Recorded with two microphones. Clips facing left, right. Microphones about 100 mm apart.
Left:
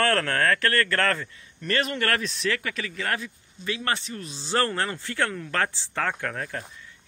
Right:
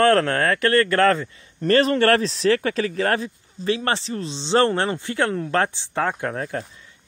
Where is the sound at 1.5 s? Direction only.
35° right (ahead or behind).